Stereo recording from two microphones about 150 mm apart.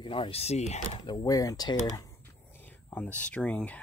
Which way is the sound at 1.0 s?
25° left (ahead or behind).